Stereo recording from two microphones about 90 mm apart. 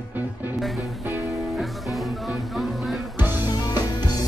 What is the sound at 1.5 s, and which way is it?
Music, centre (ahead or behind).